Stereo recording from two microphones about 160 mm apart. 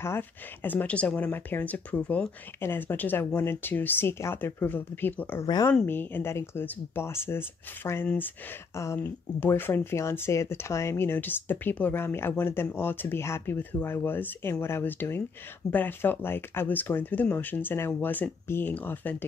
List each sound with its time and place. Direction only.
0.0 s speech: 15° left (ahead or behind)